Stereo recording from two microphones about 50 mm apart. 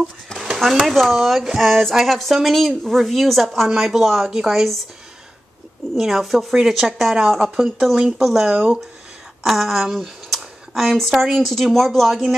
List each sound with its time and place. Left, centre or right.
0.7 s speech: centre
5.9 s speech: centre
8.5 s speech: centre
9.4 s speech: centre